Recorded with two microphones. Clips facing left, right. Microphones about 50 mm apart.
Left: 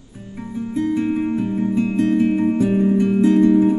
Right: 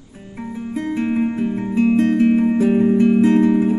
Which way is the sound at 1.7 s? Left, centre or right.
Right.